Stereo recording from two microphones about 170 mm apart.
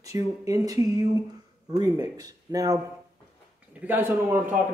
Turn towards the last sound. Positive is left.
turn(degrees=-10)  # may be behind; listen again after turning